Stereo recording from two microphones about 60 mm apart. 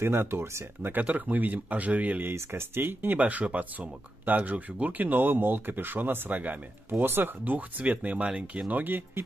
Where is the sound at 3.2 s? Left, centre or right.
Right.